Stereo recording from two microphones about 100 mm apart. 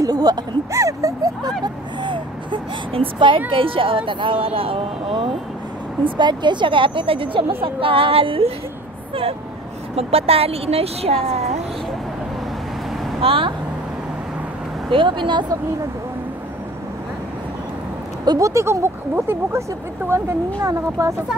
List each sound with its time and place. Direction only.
0.0 s speech: 40° right (ahead or behind)
1.6 s speech: 50° right (ahead or behind)
6.0 s a woman's voice: 50° right (ahead or behind); by 8.5 s 70° right (ahead or behind)
9.9 s speech: 80° right
13.2 s a woman's voice: 65° right (ahead or behind)
14.9 s speech: 55° right (ahead or behind)
18.2 s speech: 35° right (ahead or behind)
20.6 s speech: 35° right (ahead or behind)